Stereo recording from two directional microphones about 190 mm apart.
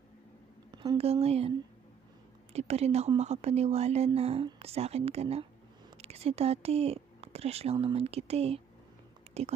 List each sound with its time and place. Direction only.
0.9 s speech: 30° right (ahead or behind)